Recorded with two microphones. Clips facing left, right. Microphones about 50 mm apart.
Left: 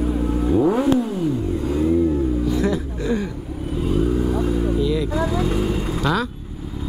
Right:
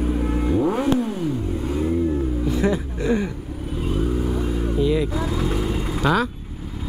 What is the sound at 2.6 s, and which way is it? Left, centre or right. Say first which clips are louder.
Music: even; right.